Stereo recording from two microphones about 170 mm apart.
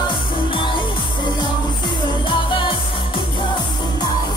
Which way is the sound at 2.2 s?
30° left (ahead or behind).